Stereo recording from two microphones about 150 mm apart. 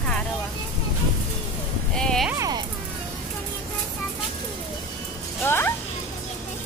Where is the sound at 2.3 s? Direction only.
20° right (ahead or behind).